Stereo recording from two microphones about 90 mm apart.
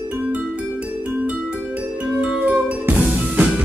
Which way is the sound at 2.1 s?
15° right (ahead or behind).